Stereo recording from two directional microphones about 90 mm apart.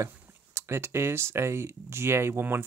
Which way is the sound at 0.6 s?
30° right (ahead or behind).